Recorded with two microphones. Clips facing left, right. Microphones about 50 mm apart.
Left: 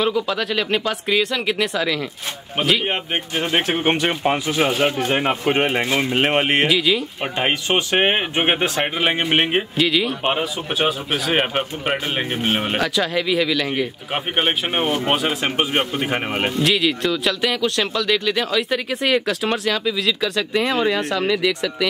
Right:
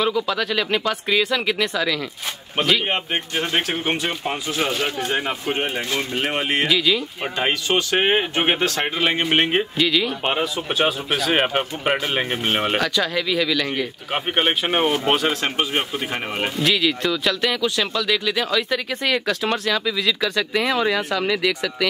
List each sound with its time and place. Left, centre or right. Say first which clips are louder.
0.0 s speech: left 1 dB; centre
3.6 s speech: left 5 dB; left
3.9 s speech: left 5 dB; left
4.5 s speech: left 2 dB; left
4.9 s speech: left 4 dB; left
5.4 s speech: left 5 dB; left
5.9 s speech: left 4 dB; left
6.1 s speech: left 4 dB; left
6.7 s speech: left 1 dB; centre
7.3 s speech: left 1 dB; left; by 15.5 s centre
15.5 s speech: left 2 dB; left
16.5 s speech: even; centre